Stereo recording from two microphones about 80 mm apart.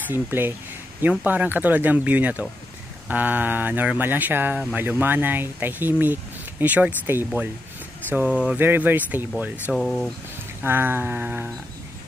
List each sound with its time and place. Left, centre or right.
0.0 s speech: right
9.8 s speech: centre
10.6 s speech: right